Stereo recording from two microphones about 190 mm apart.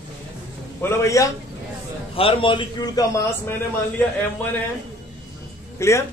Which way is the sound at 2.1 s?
30° left (ahead or behind).